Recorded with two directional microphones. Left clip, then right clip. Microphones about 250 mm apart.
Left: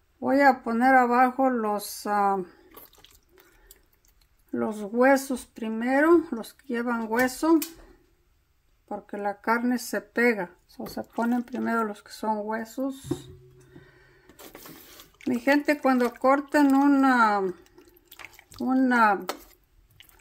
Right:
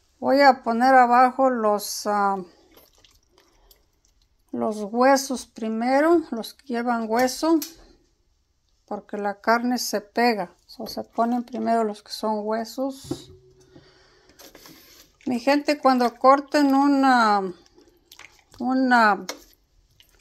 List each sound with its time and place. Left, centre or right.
0.2 s speech: centre
4.5 s speech: centre
8.8 s speech: centre
13.7 s music: centre
15.2 s speech: centre